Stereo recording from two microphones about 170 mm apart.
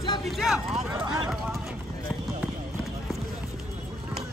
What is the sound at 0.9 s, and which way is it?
Speech, 30° right (ahead or behind).